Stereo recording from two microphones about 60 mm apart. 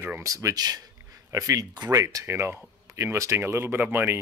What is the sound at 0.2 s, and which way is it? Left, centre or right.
Speech, right.